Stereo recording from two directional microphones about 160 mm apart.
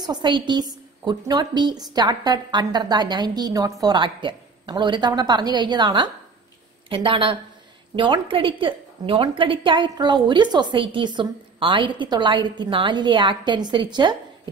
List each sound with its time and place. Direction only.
0.0 s a woman's voice: 30° right (ahead or behind)